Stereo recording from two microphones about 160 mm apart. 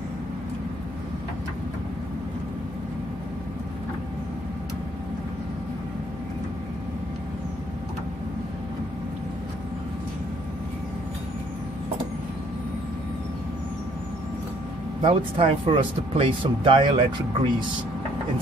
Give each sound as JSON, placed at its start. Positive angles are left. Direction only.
{"t": 15.0, "sound": "speech", "side_deg": -35}